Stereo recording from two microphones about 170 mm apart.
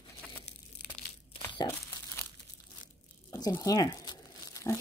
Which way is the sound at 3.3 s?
20° left (ahead or behind).